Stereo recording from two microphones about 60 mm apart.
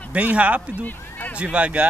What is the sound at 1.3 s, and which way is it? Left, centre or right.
Speech, right.